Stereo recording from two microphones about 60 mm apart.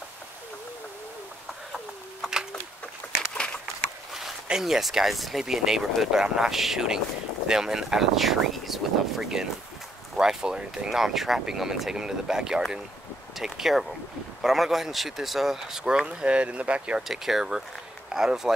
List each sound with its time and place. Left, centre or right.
3.0 s a sound: left
4.1 s speech: centre
10.9 s speech: centre
17.1 s speech: centre